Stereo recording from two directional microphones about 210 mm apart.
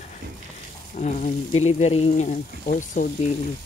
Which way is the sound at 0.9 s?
35° left (ahead or behind).